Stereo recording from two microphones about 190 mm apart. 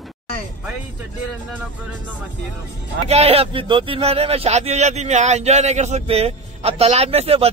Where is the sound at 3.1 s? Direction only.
30° right (ahead or behind).